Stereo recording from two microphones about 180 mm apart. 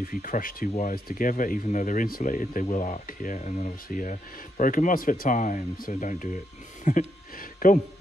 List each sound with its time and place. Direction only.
0.0 s speech: 50° left (ahead or behind)